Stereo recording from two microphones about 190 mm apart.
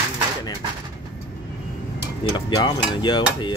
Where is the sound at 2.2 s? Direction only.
25° left (ahead or behind).